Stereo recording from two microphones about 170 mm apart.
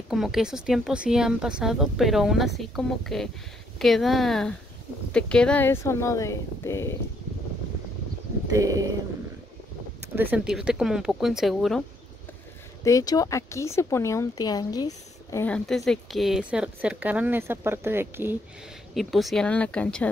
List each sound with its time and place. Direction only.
0.1 s speech: centre (ahead or behind); by 7.0 s 15° left (ahead or behind)
8.5 s speech: 20° right (ahead or behind)
10.1 s speech: 5° right (ahead or behind)
12.8 s speech: 20° left (ahead or behind)
15.4 s speech: 5° left (ahead or behind); by 18.4 s 15° right (ahead or behind)
18.9 s speech: centre (ahead or behind)